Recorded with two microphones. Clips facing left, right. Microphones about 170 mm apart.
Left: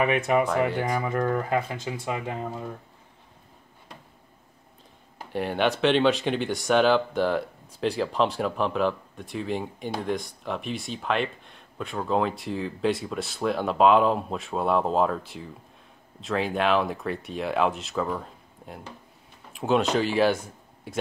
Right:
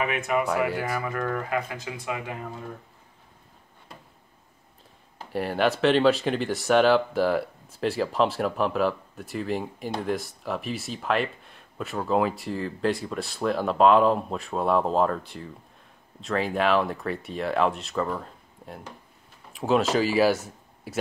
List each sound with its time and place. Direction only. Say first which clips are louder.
0.0 s speech: left 4 dB; 35° left (ahead or behind)
0.5 s speech: left 1 dB; 5° right (ahead or behind)
0.8 s speech: left 3 dB; 25° left (ahead or behind)
5.3 s speech: right 1 dB; centre (ahead or behind)